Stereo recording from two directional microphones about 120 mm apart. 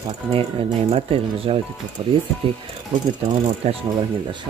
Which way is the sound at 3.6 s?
60° right (ahead or behind).